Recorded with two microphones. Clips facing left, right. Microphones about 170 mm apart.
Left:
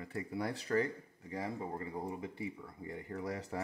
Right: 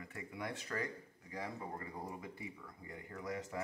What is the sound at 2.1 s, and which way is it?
Speech, 25° left (ahead or behind).